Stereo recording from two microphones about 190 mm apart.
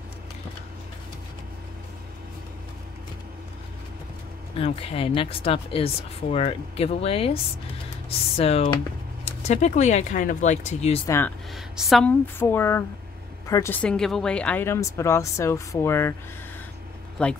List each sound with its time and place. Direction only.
4.6 s speech: 30° left (ahead or behind)
8.4 s speech: 30° left (ahead or behind)
11.1 s speech: 10° left (ahead or behind)
11.5 s speech: centre (ahead or behind)
17.2 s speech: 5° left (ahead or behind)